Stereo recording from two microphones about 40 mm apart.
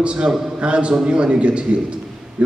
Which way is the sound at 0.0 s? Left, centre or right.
Right.